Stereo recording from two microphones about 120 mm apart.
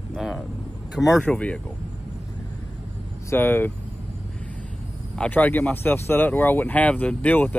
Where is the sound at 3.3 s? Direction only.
15° left (ahead or behind).